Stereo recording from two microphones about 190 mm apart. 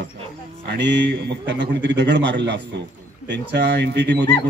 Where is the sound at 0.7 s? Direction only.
65° right (ahead or behind).